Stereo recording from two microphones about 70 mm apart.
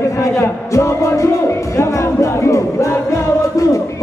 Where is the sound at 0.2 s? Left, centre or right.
Left.